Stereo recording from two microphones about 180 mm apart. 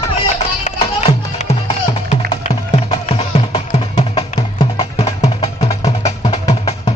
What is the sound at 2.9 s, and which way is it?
Music, 30° left (ahead or behind).